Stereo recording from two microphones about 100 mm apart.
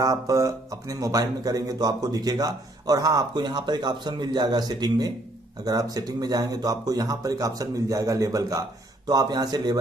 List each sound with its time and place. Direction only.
0.0 s speech: 35° right (ahead or behind)